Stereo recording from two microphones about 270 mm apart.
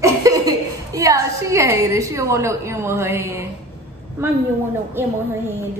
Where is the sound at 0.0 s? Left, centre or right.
Centre.